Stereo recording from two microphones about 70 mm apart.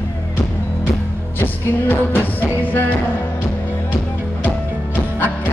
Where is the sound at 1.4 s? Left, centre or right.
Left.